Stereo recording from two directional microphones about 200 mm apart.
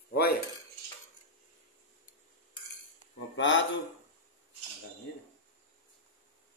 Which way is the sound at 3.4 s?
65° left (ahead or behind).